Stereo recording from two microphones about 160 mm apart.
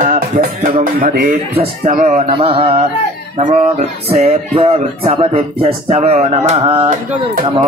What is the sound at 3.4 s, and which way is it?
Speech, 45° right (ahead or behind).